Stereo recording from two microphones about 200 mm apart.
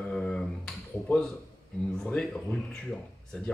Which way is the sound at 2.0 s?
Centre (ahead or behind).